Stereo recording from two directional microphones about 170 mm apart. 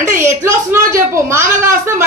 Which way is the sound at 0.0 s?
15° right (ahead or behind).